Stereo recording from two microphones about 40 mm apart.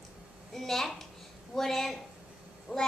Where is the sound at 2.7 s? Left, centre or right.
Centre.